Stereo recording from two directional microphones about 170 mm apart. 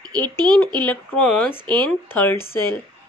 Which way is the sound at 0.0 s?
25° right (ahead or behind).